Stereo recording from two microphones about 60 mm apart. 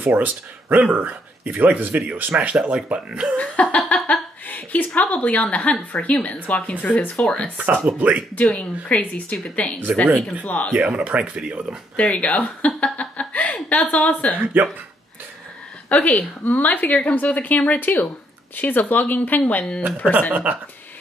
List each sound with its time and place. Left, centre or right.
0.0 s speech: right
3.3 s a woman's voice: left
7.5 s speech: right
8.8 s speech: left
10.7 s speech: centre
12.0 s speech: left
14.4 s speech: right
15.9 s speech: left
20.5 s speech: right